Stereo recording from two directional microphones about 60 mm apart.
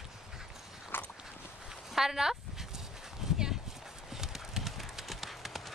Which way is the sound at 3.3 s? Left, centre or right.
Centre.